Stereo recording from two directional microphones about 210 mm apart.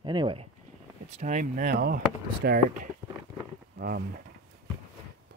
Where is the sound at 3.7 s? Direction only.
45° right (ahead or behind).